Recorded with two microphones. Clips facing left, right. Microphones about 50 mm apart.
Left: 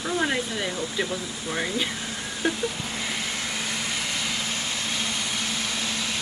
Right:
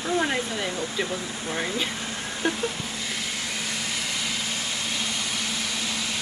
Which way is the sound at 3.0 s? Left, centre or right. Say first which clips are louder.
Left 2 dB; centre.